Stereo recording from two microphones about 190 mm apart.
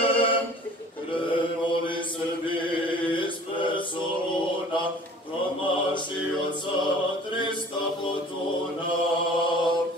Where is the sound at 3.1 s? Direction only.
25° left (ahead or behind).